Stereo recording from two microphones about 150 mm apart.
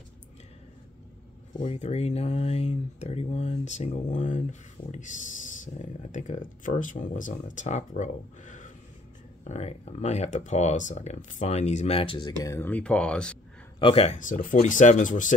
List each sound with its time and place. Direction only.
1.8 s speech: 45° left (ahead or behind)
9.5 s speech: 45° left (ahead or behind)
12.4 s speech: 15° left (ahead or behind)
13.7 s speech: 40° left (ahead or behind); by 15.3 s 60° left (ahead or behind)